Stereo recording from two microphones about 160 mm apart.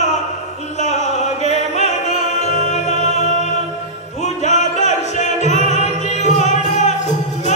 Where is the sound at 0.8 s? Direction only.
45° left (ahead or behind).